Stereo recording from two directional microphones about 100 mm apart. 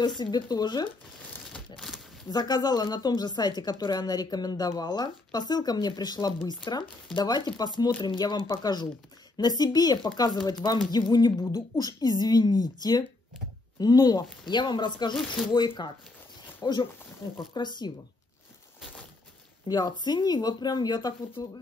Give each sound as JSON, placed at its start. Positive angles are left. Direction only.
{"t": 0.2, "sound": "speech", "side_deg": 45}
{"t": 2.3, "sound": "speech", "side_deg": 40}
{"t": 15.1, "sound": "speech", "side_deg": 5}
{"t": 15.5, "sound": "speech", "side_deg": 45}
{"t": 19.7, "sound": "speech", "side_deg": 45}